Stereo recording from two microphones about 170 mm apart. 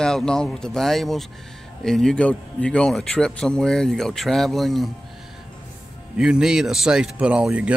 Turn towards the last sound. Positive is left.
turn(degrees=-5)  # may be behind; listen again after turning